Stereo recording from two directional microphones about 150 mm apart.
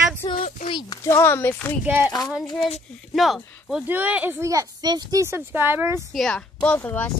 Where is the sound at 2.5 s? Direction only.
35° left (ahead or behind).